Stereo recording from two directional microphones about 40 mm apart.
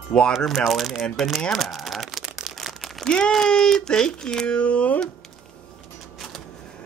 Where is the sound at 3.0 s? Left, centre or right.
Centre.